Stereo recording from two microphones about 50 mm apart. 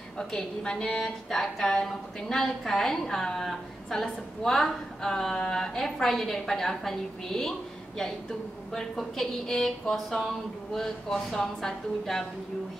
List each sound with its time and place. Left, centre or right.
0.2 s a woman's voice: centre
1.0 s music: centre
1.6 s a woman's voice: centre
8.7 s a woman's voice: centre